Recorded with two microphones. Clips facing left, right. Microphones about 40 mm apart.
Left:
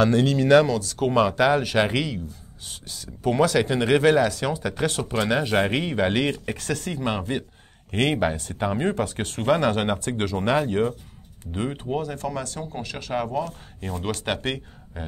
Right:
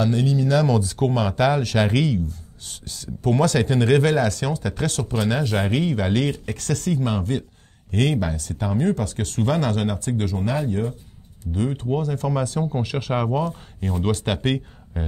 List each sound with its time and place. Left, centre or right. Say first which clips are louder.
0.0 s speech: left 2 dB; left
1.0 s speech: left 1 dB; centre
1.3 s speech: even; centre; by 10.2 s left
10.2 s speech: left 4 dB; left
11.7 s speech: right 3 dB; centre
14.0 s speech: right 3 dB; centre